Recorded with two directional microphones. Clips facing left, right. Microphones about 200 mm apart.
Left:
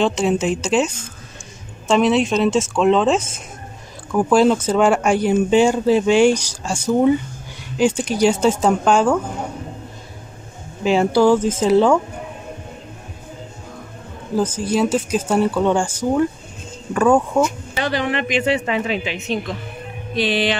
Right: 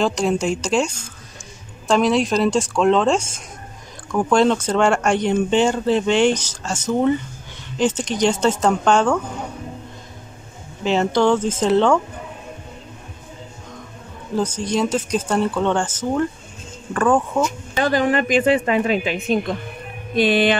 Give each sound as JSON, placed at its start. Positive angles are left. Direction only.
{"t": 0.0, "sound": "speech", "side_deg": 0}
{"t": 10.8, "sound": "speech", "side_deg": 10}
{"t": 14.6, "sound": "speech", "side_deg": 5}
{"t": 17.8, "sound": "a woman's voice", "side_deg": -45}